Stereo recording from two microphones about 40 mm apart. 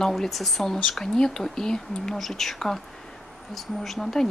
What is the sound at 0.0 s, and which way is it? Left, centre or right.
Speech, centre.